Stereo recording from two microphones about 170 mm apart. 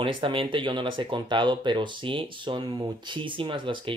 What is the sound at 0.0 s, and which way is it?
Speech, 30° right (ahead or behind).